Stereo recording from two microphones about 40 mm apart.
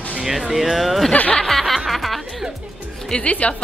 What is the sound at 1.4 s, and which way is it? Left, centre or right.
Snicker, centre.